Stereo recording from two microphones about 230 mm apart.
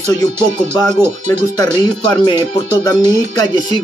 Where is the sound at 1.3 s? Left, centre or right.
Centre.